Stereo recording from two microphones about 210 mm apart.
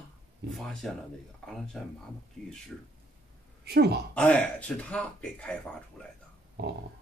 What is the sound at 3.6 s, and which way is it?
Speech, 50° right (ahead or behind).